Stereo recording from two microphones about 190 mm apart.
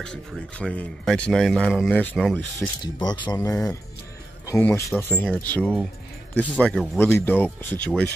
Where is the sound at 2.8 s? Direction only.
20° left (ahead or behind).